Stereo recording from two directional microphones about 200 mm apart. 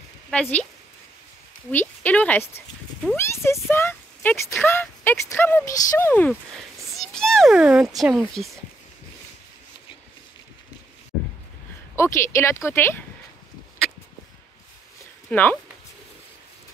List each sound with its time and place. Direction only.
0.3 s speech: 5° left (ahead or behind)
1.7 s a child's voice: 10° left (ahead or behind)
12.0 s speech: 15° left (ahead or behind)
15.2 s speech: 10° left (ahead or behind)